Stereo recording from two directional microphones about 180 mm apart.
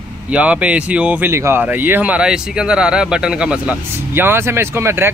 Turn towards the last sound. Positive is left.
turn(degrees=-15)  # may be behind; listen again after turning